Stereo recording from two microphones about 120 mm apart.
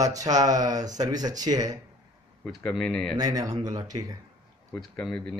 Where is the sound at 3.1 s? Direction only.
30° right (ahead or behind).